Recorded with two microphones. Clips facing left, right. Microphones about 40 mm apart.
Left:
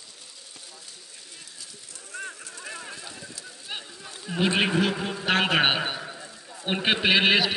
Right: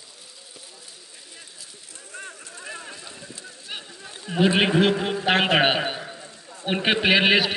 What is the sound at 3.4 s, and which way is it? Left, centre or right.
Bird, centre.